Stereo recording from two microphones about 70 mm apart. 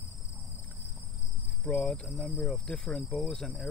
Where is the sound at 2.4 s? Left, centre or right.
Centre.